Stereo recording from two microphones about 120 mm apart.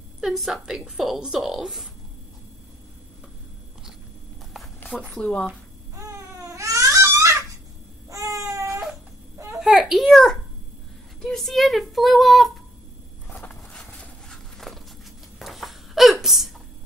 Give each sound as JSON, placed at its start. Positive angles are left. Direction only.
{"t": 0.2, "sound": "a woman's voice", "side_deg": 0}
{"t": 4.6, "sound": "a sound", "side_deg": 0}
{"t": 5.0, "sound": "speech", "side_deg": 10}
{"t": 5.9, "sound": "crying", "side_deg": -25}
{"t": 8.1, "sound": "babbling", "side_deg": -25}
{"t": 9.6, "sound": "a sound", "side_deg": 0}
{"t": 11.1, "sound": "a woman's voice", "side_deg": 5}
{"t": 13.3, "sound": "a sound", "side_deg": 10}
{"t": 15.3, "sound": "hiccup", "side_deg": 0}